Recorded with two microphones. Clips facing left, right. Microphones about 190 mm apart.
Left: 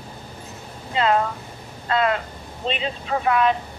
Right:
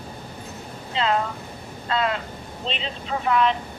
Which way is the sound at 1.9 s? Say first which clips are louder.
Left 3 dB; 55° left (ahead or behind).